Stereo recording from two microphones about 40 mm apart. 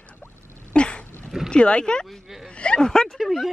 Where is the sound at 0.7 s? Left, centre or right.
Left.